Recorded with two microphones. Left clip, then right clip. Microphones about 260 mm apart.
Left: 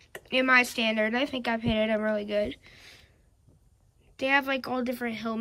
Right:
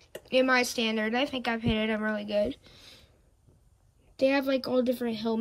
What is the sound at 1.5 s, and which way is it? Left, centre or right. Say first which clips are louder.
Speech: left 3 dB; centre.